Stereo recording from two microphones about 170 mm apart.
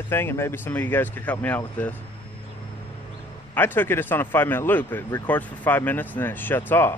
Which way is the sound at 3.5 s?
10° left (ahead or behind).